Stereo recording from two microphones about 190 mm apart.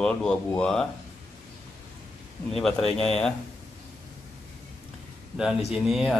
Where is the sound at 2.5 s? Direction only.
Centre (ahead or behind).